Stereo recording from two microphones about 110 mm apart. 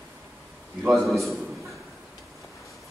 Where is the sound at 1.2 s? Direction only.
Centre (ahead or behind).